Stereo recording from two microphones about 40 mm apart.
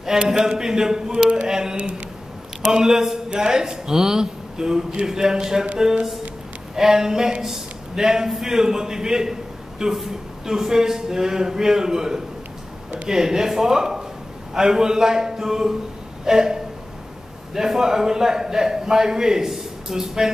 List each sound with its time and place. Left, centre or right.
0.0 s a man's voice: centre
1.8 s a man's voice: right
2.6 s a man's voice: centre
6.7 s a man's voice: centre
17.6 s a man's voice: centre